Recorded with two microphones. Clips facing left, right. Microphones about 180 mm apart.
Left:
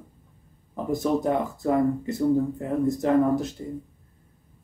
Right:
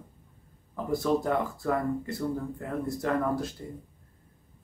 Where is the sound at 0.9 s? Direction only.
20° left (ahead or behind).